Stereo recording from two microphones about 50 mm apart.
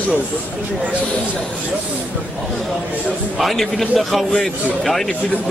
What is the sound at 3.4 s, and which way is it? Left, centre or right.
A man's voice, centre.